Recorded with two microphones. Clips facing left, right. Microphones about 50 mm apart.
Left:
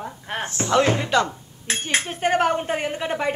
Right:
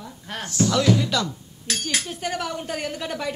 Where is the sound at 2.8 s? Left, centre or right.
Left.